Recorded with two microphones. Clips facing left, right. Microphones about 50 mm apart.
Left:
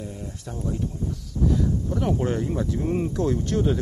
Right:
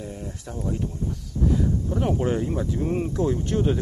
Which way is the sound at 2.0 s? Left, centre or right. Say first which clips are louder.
Right 1 dB; centre.